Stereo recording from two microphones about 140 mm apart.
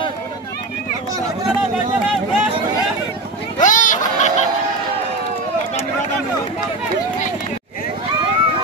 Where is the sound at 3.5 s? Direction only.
65° left (ahead or behind).